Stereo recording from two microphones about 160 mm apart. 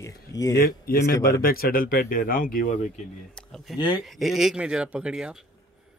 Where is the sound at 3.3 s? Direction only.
5° left (ahead or behind).